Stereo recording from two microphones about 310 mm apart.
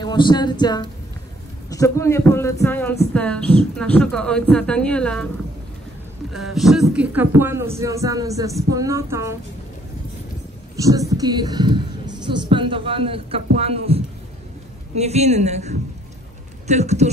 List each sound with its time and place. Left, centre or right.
0.0 s a sound: centre
2.6 s a woman's voice: centre
6.3 s a woman's voice: centre
10.8 s a woman's voice: centre